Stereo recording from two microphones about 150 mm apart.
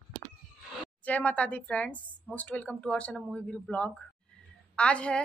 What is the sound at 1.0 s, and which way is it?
A woman's voice, 10° left (ahead or behind).